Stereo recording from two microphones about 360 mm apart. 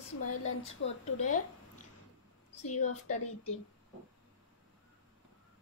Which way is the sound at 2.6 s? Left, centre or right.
Left.